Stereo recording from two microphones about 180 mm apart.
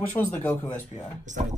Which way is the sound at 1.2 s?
40° right (ahead or behind).